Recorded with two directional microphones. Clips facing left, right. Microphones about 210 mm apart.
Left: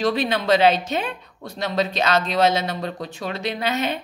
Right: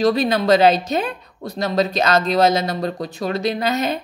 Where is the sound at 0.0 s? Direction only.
40° right (ahead or behind).